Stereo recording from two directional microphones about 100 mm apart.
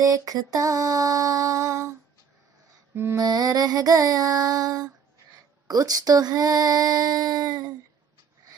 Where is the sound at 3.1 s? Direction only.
40° right (ahead or behind).